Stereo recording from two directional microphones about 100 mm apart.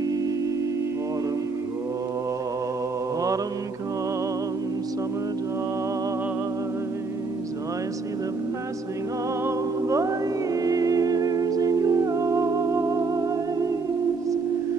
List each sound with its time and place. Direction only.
9.8 s music: 30° right (ahead or behind)